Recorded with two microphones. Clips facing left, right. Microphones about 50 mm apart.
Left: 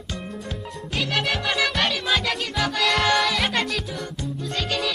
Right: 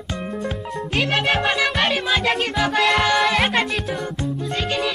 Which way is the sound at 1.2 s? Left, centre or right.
Right.